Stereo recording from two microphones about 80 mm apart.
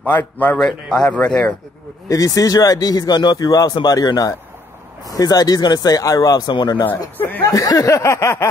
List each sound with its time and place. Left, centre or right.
0.0 s a man's voice: left
0.6 s speech: centre
2.0 s speech: left
3.8 s speech: left
6.5 s speech: left
7.4 s a sound: left